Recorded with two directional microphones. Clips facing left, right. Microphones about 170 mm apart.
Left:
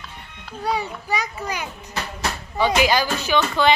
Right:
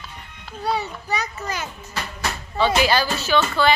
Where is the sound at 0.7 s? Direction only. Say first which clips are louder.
Even; 10° left (ahead or behind).